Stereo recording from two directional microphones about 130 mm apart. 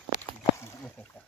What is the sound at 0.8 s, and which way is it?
Speech, 5° left (ahead or behind).